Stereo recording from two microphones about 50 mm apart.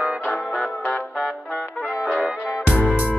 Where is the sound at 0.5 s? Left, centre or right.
Left.